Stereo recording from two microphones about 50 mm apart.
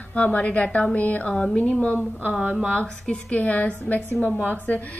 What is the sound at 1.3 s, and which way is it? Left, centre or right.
A woman's voice, centre.